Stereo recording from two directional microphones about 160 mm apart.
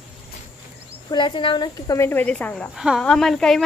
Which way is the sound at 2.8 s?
Centre (ahead or behind).